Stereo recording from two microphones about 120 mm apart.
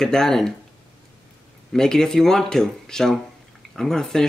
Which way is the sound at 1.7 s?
5° left (ahead or behind).